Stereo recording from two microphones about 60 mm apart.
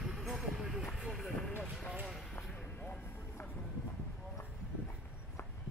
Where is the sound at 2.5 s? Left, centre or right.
Left.